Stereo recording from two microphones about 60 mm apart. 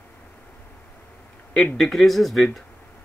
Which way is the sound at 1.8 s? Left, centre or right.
Centre.